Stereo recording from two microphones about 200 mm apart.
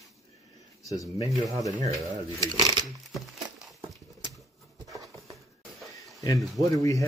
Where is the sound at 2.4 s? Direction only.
20° right (ahead or behind).